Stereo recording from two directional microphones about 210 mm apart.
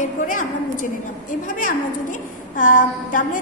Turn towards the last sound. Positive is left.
turn(degrees=40)  # may be behind; listen again after turning